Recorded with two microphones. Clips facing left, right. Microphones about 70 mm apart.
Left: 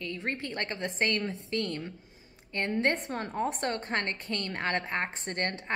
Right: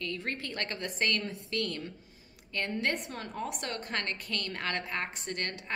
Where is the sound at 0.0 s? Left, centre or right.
Left.